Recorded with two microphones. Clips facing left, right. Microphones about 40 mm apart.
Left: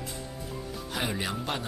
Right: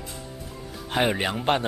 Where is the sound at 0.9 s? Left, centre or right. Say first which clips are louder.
Right 8 dB; right.